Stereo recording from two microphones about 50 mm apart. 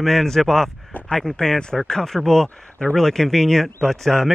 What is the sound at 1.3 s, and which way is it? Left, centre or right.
Speech, centre.